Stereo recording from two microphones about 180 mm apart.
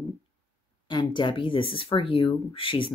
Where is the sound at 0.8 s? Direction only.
25° left (ahead or behind).